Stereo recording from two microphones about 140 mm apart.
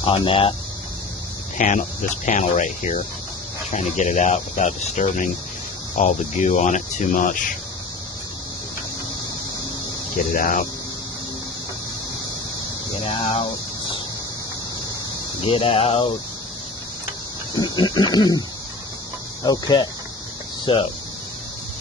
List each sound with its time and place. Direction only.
0.0 s speech: 40° left (ahead or behind)
1.6 s speech: 65° left (ahead or behind)
10.3 s speech: 65° left (ahead or behind)
13.0 s speech: 45° left (ahead or behind)
15.4 s speech: 45° left (ahead or behind)
17.6 s speech: 30° left (ahead or behind)
19.4 s speech: 25° left (ahead or behind)